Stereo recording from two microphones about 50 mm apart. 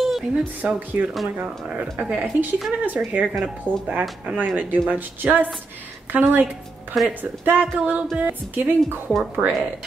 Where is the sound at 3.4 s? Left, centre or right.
Right.